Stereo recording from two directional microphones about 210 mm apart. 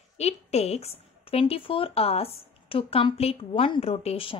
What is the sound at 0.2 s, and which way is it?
A woman's voice, 30° left (ahead or behind).